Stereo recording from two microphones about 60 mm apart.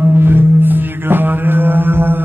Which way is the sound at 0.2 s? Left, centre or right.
Right.